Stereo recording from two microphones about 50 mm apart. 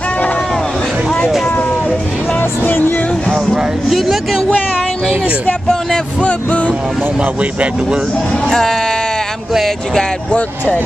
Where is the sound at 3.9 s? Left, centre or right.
Centre.